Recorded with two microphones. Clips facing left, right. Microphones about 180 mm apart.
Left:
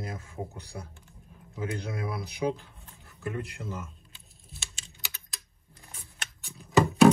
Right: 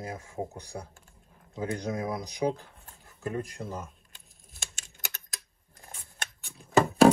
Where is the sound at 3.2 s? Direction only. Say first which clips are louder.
Right 2 dB; 35° right (ahead or behind).